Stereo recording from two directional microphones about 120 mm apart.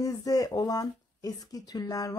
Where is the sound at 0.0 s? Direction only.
30° left (ahead or behind).